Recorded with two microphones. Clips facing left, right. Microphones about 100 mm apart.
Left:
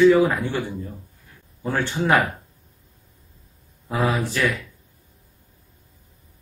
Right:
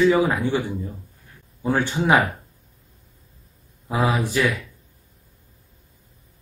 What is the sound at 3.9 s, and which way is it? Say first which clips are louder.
Speech: right 1 dB; 20° right (ahead or behind).